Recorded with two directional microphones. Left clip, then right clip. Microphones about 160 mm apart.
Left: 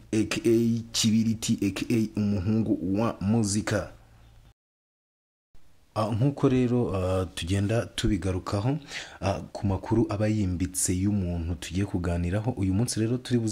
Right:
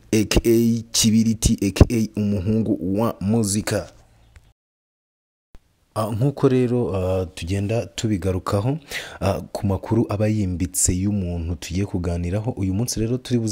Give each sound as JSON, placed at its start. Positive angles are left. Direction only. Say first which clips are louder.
{"t": 0.1, "sound": "speech", "louder": "right 6 dB", "side_deg": -55}
{"t": 5.9, "sound": "speech", "louder": "right 4 dB", "side_deg": -30}
{"t": 8.1, "sound": "speech", "louder": "right 7 dB", "side_deg": -50}